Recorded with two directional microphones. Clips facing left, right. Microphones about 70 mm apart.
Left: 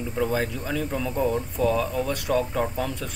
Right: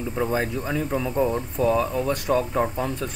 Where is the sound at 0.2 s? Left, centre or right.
Right.